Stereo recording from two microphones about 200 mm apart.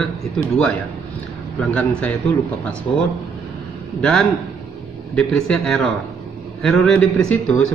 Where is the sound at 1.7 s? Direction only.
5° left (ahead or behind).